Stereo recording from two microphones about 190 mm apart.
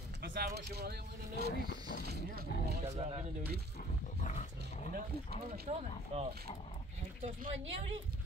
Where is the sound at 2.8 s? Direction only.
30° right (ahead or behind).